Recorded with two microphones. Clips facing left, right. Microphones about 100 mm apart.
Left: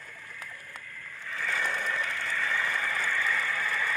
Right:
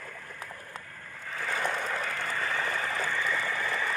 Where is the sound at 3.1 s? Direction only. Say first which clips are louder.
Even; 20° right (ahead or behind).